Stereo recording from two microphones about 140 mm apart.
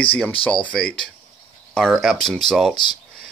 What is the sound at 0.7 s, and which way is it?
Speech, 5° left (ahead or behind).